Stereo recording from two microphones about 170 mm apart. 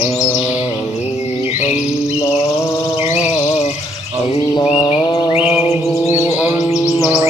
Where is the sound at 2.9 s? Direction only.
40° left (ahead or behind).